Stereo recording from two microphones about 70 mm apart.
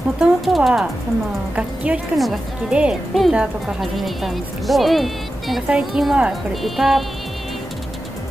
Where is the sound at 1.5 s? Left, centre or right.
Centre.